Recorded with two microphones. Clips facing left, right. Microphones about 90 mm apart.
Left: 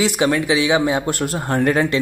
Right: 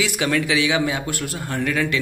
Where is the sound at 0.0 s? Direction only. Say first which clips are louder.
Left 4 dB; 25° left (ahead or behind).